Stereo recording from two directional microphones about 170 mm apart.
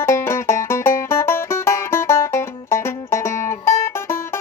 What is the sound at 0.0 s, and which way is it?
Music, 15° left (ahead or behind).